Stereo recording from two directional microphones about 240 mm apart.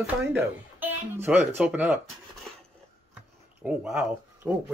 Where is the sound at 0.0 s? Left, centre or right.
Centre.